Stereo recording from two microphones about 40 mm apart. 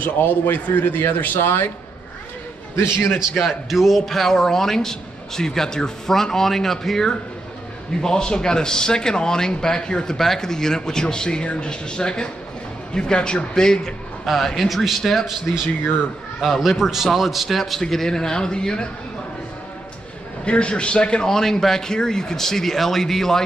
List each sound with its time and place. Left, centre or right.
0.0 s a man's voice: left
1.4 s speech: left
3.3 s a man's voice: centre
10.1 s speech: centre
14.2 s speech: centre
16.3 s a man's voice: centre; by 18.9 s left
20.4 s a man's voice: left; by 23.4 s centre